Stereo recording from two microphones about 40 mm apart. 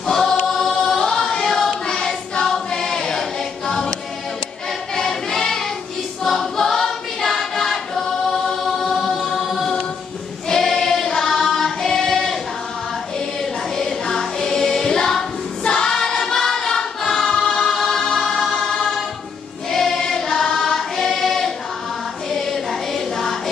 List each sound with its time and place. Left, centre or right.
0.0 s choir: centre
4.9 s choir: centre
13.4 s music: centre
15.6 s choir: centre
17.5 s music: left
17.7 s music: centre
19.7 s choir: centre
22.3 s music: centre